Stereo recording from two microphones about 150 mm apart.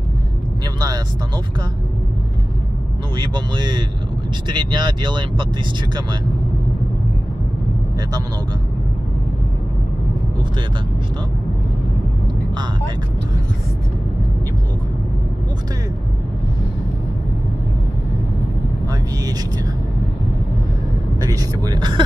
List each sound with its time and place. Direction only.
0.7 s speech: 25° right (ahead or behind)
3.2 s speech: 30° right (ahead or behind)
21.2 s speech: 25° right (ahead or behind)